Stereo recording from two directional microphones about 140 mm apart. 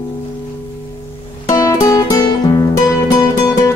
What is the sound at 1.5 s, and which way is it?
Music, 25° left (ahead or behind).